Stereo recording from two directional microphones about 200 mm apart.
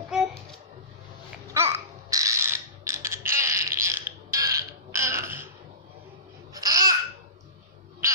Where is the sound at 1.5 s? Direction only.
15° right (ahead or behind).